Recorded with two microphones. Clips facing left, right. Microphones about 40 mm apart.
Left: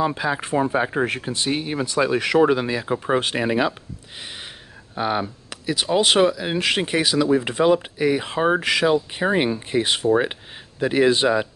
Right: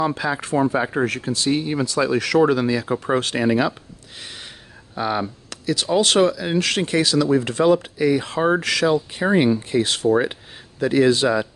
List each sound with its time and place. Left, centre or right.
0.0 s speech: centre
1.0 s speech: left
2.9 s speech: centre
4.2 s a sound: centre
4.9 s speech: centre